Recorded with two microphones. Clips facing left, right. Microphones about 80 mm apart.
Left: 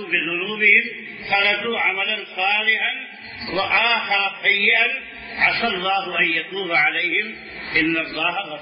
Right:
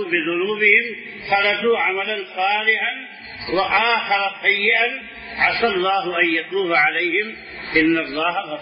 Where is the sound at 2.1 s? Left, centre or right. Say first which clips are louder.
Right 3 dB; right.